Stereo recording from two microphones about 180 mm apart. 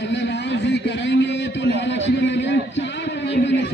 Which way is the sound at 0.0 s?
75° left (ahead or behind).